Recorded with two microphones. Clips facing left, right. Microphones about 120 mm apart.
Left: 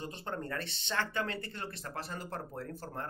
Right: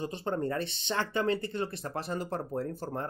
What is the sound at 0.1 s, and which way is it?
Speech, 20° right (ahead or behind).